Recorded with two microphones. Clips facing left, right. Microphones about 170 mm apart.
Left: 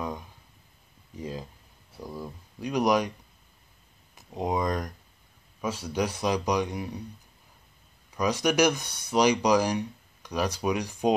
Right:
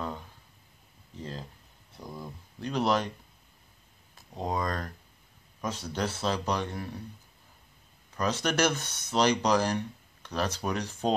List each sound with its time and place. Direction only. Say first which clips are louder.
1.1 s speech: left 4 dB; 10° left (ahead or behind)
4.1 s speech: left 4 dB; 20° left (ahead or behind)
8.2 s speech: left 4 dB; 10° left (ahead or behind)